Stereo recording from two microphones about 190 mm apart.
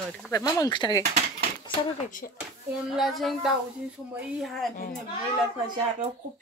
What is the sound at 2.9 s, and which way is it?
Speech, centre (ahead or behind).